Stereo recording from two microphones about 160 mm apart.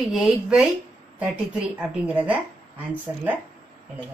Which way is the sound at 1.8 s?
10° right (ahead or behind).